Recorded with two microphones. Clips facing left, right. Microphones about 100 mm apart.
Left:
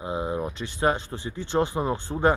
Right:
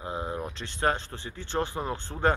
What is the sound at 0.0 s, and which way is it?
Speech, 15° left (ahead or behind).